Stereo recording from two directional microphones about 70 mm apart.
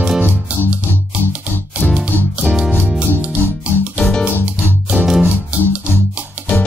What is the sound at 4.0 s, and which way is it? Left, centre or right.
Music, centre.